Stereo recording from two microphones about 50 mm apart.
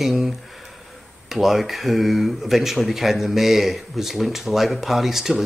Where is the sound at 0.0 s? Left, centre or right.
Centre.